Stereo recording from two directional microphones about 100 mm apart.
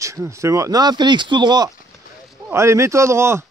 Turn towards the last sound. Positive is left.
turn(degrees=-25)  # may be behind; listen again after turning